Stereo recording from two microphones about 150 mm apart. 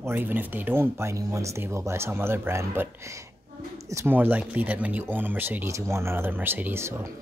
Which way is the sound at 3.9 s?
15° right (ahead or behind).